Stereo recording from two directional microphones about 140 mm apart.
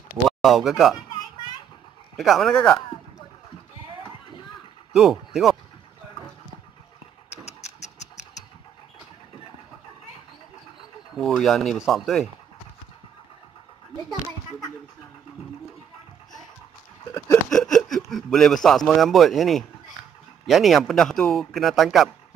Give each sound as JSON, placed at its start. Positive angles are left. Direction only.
{"t": 0.4, "sound": "a man's voice", "side_deg": 0}
{"t": 2.1, "sound": "a man's voice", "side_deg": 0}
{"t": 4.9, "sound": "speech", "side_deg": 0}
{"t": 7.2, "sound": "a sound", "side_deg": 55}
{"t": 11.1, "sound": "a man's voice", "side_deg": 0}
{"t": 17.5, "sound": "a man's voice", "side_deg": 5}